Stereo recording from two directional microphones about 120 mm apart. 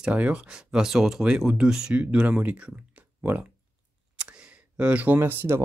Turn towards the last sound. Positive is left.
turn(degrees=-20)  # may be behind; listen again after turning